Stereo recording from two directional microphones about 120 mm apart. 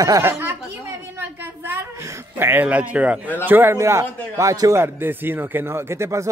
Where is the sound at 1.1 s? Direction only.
15° right (ahead or behind).